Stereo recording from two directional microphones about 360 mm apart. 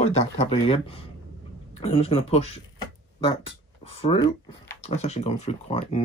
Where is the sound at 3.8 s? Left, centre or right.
Centre.